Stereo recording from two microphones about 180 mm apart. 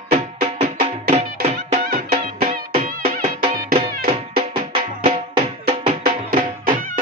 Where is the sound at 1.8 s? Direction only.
55° right (ahead or behind).